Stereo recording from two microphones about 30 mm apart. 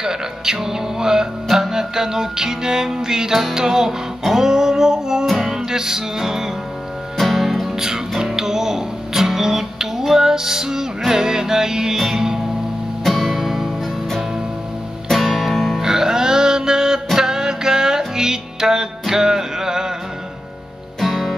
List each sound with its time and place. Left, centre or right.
0.0 s music: centre
5.2 s music: centre
5.5 s music: centre
7.2 s music: centre
7.6 s music: centre
13.0 s guitar: centre
13.3 s music: centre
15.0 s music: centre
15.8 s music: centre
21.0 s music: centre